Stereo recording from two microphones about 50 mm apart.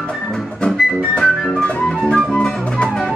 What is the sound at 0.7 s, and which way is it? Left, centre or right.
Music, centre.